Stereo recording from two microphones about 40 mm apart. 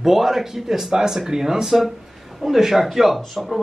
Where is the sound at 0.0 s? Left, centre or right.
Centre.